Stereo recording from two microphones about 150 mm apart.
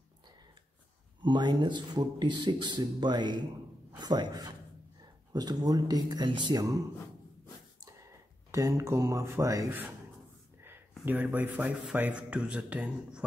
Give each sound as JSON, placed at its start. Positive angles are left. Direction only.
{"t": 1.2, "sound": "speech", "side_deg": -30}
{"t": 7.8, "sound": "speech", "side_deg": -20}